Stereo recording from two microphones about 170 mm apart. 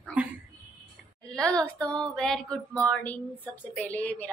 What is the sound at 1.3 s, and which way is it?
Female singing, 5° left (ahead or behind).